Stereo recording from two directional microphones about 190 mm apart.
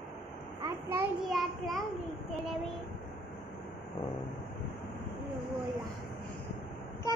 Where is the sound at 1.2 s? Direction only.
Centre (ahead or behind).